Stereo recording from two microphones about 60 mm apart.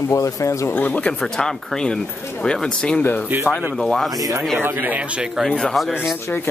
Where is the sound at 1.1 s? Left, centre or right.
Centre.